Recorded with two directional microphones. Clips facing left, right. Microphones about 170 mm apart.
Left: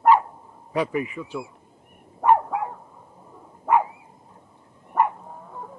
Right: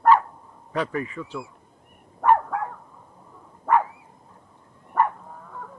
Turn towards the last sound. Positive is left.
turn(degrees=25)  # may be behind; listen again after turning